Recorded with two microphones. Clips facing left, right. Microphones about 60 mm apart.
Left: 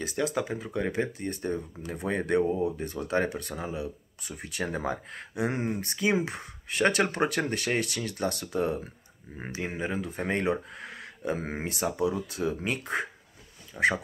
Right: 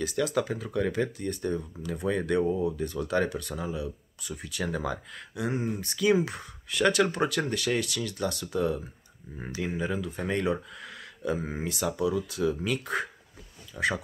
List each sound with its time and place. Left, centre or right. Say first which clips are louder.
0.0 s speech: right 2 dB; left
5.5 s speech: even; left
5.9 s speech: right 4 dB; left
11.3 s speech: even; left
13.7 s speech: left 3 dB; left